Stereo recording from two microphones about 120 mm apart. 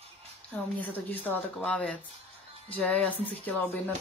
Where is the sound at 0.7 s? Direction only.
15° left (ahead or behind).